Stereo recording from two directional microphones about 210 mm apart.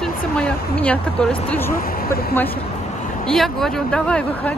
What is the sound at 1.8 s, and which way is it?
Speech, 45° left (ahead or behind).